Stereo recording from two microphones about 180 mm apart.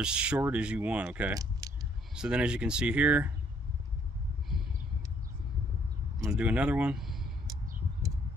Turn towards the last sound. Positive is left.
turn(degrees=0)  # may be behind; listen again after turning